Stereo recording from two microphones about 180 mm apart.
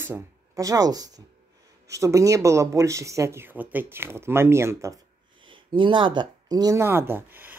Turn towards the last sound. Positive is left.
turn(degrees=-10)  # may be behind; listen again after turning